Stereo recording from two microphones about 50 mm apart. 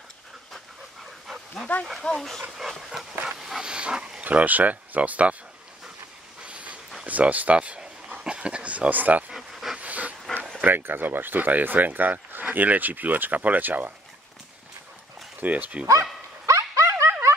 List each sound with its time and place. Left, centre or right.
1.7 s speech: left
2.0 s speech: centre
2.5 s dog: centre
3.6 s dog: centre
4.2 s speech: right
6.4 s dog: right
7.1 s speech: right
9.3 s a sound: centre
9.8 s pant: right
10.6 s speech: right
15.4 s dog: right
15.9 s dog: right